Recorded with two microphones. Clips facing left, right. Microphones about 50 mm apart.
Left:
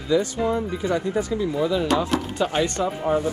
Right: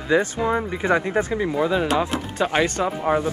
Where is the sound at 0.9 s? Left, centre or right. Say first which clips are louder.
Right 4 dB; right.